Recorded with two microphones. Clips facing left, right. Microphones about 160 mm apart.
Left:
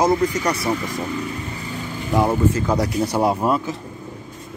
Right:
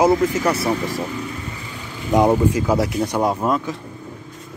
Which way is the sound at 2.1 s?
15° right (ahead or behind).